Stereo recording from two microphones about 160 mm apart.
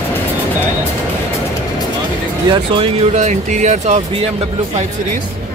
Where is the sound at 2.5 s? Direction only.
35° right (ahead or behind).